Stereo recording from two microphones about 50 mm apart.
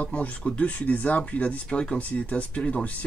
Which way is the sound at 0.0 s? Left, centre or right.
Left.